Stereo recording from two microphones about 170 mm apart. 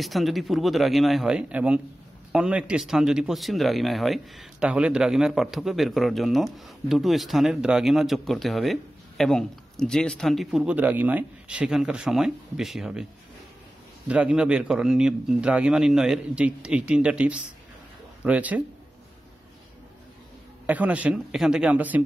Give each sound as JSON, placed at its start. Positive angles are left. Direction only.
{"t": 0.0, "sound": "speech", "side_deg": 0}
{"t": 14.0, "sound": "a man's voice", "side_deg": -5}
{"t": 20.6, "sound": "a man's voice", "side_deg": -10}